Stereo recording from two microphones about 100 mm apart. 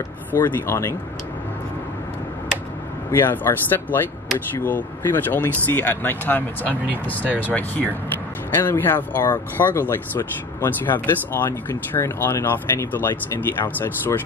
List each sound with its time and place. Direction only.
0.3 s speech: 20° left (ahead or behind)
3.1 s speech: 20° left (ahead or behind)